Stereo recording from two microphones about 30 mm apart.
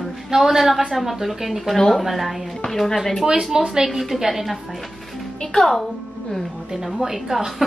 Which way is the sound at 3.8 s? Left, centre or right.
Centre.